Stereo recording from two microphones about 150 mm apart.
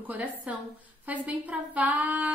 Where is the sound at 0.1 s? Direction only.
10° right (ahead or behind).